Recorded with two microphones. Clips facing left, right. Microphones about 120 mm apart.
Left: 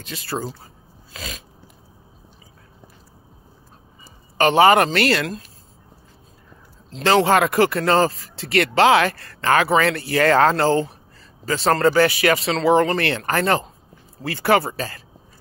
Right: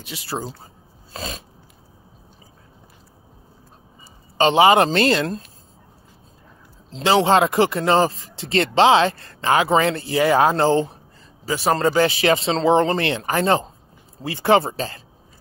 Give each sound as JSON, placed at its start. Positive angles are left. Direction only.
{"t": 0.0, "sound": "speech", "side_deg": -15}
{"t": 1.1, "sound": "a sound", "side_deg": -30}
{"t": 4.4, "sound": "speech", "side_deg": -20}
{"t": 7.0, "sound": "speech", "side_deg": -15}